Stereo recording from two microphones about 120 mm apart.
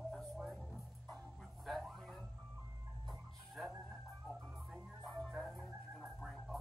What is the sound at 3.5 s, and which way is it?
Music, centre (ahead or behind).